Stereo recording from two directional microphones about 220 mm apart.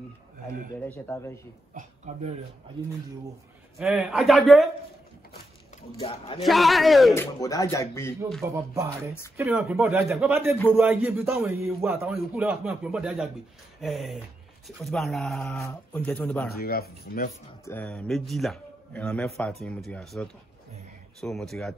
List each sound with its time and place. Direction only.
0.8 s speech: 10° left (ahead or behind)
1.7 s a sound: 35° right (ahead or behind)
3.7 s a man's voice: centre (ahead or behind)
5.9 s speech: 25° left (ahead or behind)
6.4 s a man's voice: centre (ahead or behind)
7.2 s speech: 15° left (ahead or behind)
8.4 s a man's voice: 10° right (ahead or behind)
10.3 s a man's voice: 10° right (ahead or behind); by 16.4 s 5° left (ahead or behind)
16.5 s speech: 45° left (ahead or behind)
17.6 s a man's voice: 5° left (ahead or behind)